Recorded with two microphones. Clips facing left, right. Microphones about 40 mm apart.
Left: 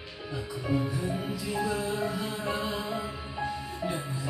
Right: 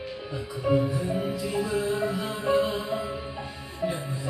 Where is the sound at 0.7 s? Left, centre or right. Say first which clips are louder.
Right 6 dB; centre.